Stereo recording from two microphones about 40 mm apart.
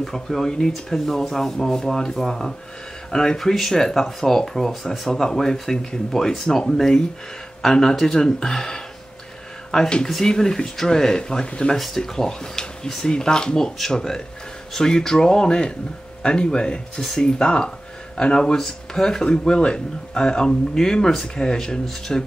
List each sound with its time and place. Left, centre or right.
0.0 s speech: centre
7.6 s speech: centre
13.6 s speech: centre